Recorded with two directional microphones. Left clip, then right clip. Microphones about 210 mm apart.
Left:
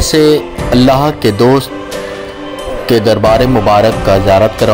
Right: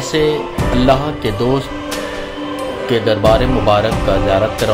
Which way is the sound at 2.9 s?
35° left (ahead or behind).